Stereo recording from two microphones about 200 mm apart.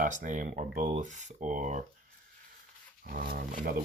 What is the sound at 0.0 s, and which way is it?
Speech, 40° right (ahead or behind).